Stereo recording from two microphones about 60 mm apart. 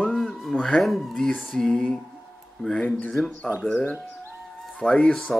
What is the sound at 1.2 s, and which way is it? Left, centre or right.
Music, centre.